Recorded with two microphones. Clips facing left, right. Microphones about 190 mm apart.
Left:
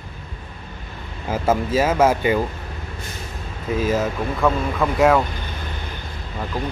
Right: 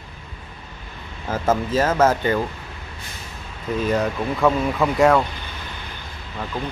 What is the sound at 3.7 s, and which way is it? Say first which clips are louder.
Speech: even; 5° left (ahead or behind).